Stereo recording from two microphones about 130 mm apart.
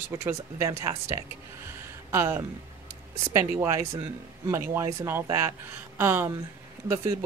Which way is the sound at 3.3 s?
20° right (ahead or behind).